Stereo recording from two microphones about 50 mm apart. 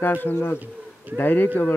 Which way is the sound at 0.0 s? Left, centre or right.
Left.